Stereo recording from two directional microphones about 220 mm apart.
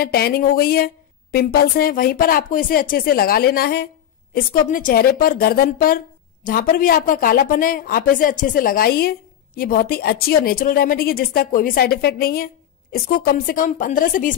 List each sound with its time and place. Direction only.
0.0 s a woman's voice: 45° left (ahead or behind)